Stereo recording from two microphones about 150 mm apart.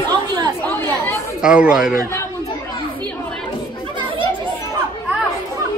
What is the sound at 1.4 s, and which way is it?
Speech, 5° right (ahead or behind).